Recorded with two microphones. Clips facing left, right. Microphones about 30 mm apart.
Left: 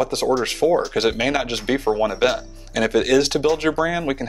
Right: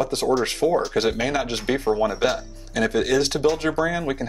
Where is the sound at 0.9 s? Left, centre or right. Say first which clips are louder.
Left 2 dB; left.